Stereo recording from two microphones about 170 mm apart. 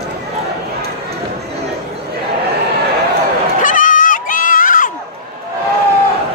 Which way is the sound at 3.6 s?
50° left (ahead or behind).